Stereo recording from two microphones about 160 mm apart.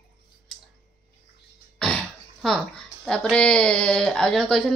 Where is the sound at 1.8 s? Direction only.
5° left (ahead or behind).